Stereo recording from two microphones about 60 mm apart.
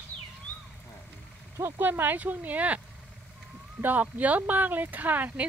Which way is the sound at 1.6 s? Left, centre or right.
Right.